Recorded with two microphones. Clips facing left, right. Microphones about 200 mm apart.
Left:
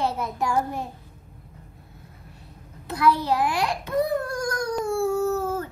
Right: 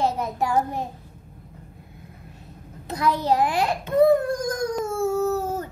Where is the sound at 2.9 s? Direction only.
20° right (ahead or behind).